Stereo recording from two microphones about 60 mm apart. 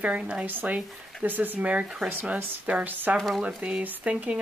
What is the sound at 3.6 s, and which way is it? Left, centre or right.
Speech, centre.